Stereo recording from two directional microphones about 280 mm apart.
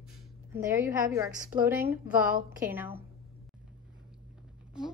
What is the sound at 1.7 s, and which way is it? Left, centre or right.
Speech, centre.